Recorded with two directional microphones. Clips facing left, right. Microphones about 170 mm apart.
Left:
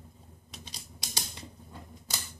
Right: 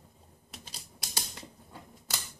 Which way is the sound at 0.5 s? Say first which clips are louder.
Left 1 dB; 5° right (ahead or behind).